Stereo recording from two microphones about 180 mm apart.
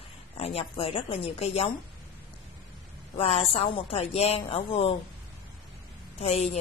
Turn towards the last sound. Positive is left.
turn(degrees=35)  # may be behind; listen again after turning